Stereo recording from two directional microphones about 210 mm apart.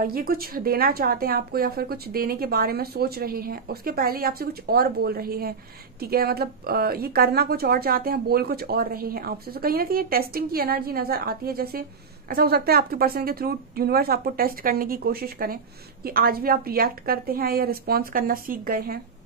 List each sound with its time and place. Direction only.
0.0 s a woman's voice: 45° right (ahead or behind)